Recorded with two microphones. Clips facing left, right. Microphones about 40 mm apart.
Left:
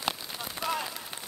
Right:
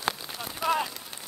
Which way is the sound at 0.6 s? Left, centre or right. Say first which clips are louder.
Right 5 dB; centre.